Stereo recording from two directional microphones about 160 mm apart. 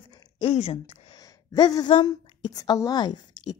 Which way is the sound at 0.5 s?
40° left (ahead or behind).